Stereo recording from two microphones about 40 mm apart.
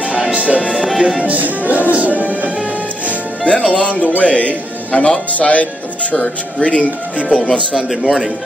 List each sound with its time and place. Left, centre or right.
0.3 s speech: right
1.2 s music: right
3.4 s speech: left
7.9 s a man's voice: centre